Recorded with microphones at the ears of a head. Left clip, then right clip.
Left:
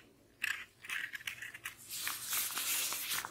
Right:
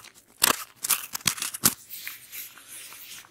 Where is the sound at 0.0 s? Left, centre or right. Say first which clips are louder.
Right 13 dB; right.